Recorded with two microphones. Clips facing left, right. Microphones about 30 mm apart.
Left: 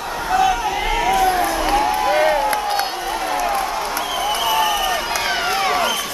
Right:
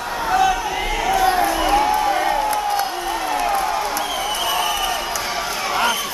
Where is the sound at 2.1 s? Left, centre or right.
Left.